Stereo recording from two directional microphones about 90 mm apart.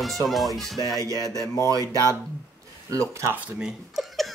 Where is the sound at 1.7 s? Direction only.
40° right (ahead or behind).